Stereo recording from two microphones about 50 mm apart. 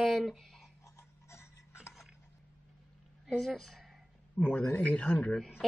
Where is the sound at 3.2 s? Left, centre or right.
Centre.